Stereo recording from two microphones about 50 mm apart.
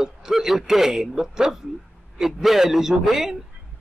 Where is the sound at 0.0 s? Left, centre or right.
Centre.